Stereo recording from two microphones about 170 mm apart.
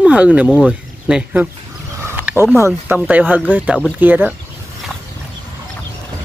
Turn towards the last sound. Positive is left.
turn(degrees=-10)  # may be behind; listen again after turning